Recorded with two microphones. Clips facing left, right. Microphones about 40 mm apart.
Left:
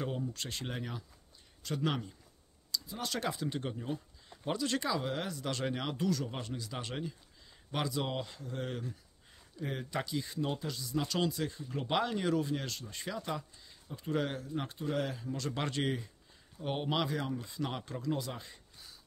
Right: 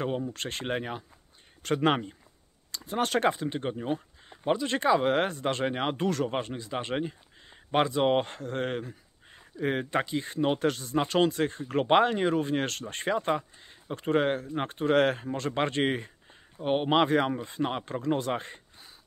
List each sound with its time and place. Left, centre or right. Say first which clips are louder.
0.0 s speech: right 7 dB; right
1.6 s speech: right 9 dB; right
11.9 s speech: right 8 dB; right
13.8 s speech: right 10 dB; right
14.1 s speech: right 8 dB; right
15.2 s speech: right 7 dB; right
17.4 s speech: right 8 dB; right